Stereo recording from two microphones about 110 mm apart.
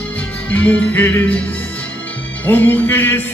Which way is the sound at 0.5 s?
15° left (ahead or behind).